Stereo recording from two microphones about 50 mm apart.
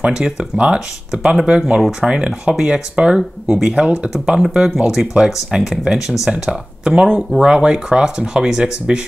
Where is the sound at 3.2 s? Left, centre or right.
Centre.